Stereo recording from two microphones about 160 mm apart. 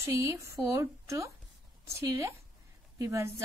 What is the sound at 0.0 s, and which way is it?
A woman's voice, 15° right (ahead or behind).